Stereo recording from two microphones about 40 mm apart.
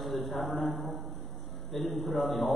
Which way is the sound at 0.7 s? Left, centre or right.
Left.